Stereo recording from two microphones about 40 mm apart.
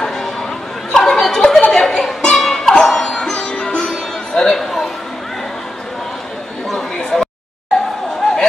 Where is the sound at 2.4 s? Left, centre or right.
Centre.